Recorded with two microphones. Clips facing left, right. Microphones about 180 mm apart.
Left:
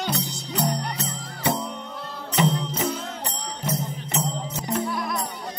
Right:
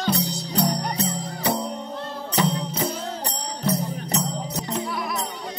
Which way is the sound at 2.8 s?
35° right (ahead or behind).